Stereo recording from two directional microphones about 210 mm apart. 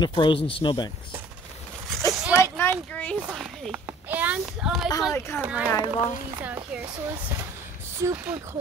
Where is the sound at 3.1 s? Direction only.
5° right (ahead or behind).